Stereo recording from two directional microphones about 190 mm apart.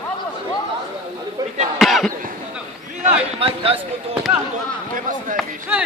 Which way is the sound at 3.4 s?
30° right (ahead or behind).